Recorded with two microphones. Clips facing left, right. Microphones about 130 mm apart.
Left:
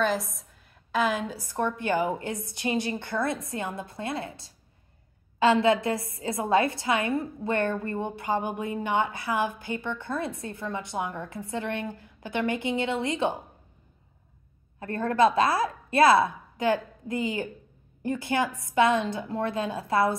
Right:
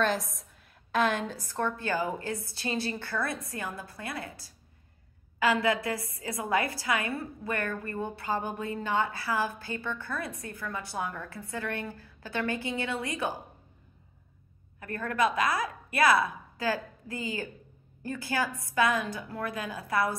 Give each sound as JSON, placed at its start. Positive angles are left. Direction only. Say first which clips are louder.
{"t": 0.0, "sound": "a woman's voice", "louder": "left 2 dB", "side_deg": 0}
{"t": 14.8, "sound": "a woman's voice", "louder": "left 6 dB", "side_deg": 30}